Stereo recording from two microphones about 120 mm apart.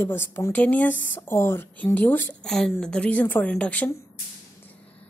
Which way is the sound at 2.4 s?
5° left (ahead or behind).